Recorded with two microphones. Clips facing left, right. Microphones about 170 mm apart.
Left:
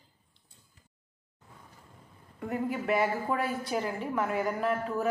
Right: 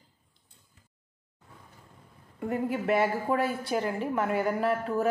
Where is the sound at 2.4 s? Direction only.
30° right (ahead or behind).